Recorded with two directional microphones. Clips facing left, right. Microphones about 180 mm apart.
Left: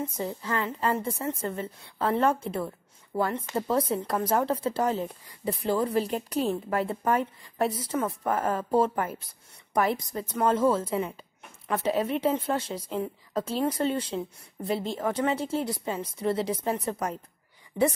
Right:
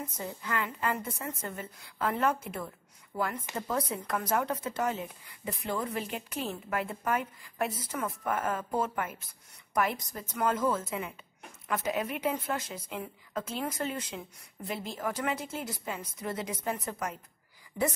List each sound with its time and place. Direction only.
0.0 s a woman's voice: 30° left (ahead or behind)